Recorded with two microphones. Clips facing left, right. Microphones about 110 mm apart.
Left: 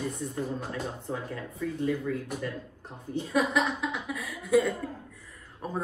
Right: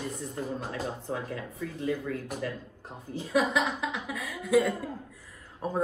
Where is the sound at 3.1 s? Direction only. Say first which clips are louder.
Even; centre (ahead or behind).